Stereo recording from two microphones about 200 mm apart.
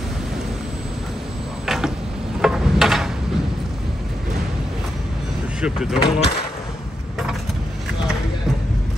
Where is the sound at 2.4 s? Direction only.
Centre (ahead or behind).